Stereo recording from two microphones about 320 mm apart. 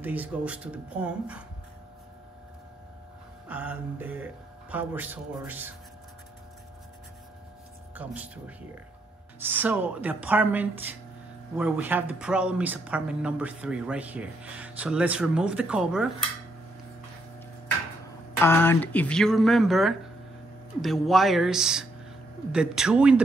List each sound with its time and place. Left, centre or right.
0.0 s a woman's voice: centre
3.4 s a woman's voice: centre
7.9 s a woman's voice: centre
18.4 s a woman's voice: centre